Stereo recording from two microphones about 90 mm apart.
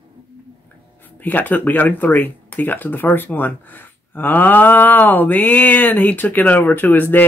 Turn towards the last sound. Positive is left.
turn(degrees=20)  # may be behind; listen again after turning